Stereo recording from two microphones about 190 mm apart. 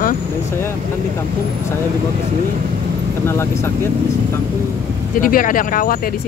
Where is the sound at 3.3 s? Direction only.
15° left (ahead or behind).